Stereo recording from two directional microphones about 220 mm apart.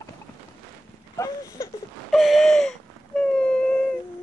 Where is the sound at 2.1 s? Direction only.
Centre (ahead or behind).